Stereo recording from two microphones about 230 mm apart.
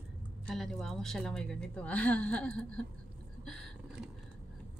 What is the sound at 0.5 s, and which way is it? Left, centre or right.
A woman's voice, centre.